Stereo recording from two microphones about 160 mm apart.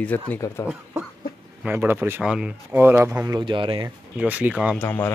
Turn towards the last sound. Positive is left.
turn(degrees=15)  # may be behind; listen again after turning